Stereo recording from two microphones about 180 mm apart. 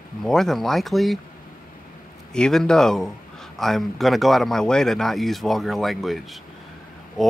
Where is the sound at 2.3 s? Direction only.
5° left (ahead or behind).